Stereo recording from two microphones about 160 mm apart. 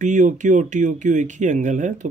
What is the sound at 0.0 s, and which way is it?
Speech, 50° right (ahead or behind).